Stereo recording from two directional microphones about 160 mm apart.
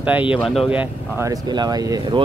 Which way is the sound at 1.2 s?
25° right (ahead or behind).